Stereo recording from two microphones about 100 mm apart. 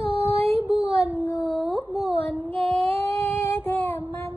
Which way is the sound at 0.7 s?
90° right.